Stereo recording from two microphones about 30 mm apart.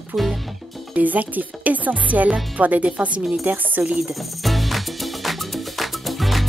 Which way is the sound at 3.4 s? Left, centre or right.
Right.